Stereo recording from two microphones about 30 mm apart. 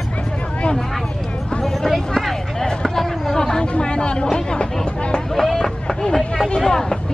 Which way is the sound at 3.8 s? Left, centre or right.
Left.